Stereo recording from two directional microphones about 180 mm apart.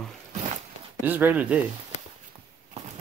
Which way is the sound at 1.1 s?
10° right (ahead or behind).